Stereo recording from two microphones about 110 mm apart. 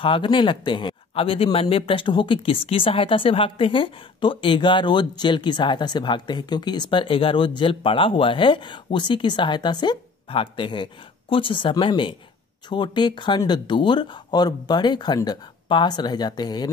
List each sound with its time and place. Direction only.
0.0 s speech: 50° left (ahead or behind)